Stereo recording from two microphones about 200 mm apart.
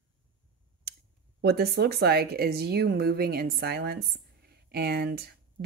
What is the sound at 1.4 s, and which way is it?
A woman's voice, 55° right (ahead or behind).